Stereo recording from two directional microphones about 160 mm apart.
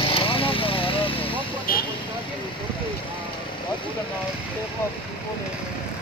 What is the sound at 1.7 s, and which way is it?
Vehicle, 65° left (ahead or behind).